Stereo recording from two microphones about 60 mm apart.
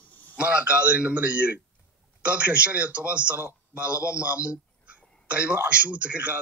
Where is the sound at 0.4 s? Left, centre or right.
Centre.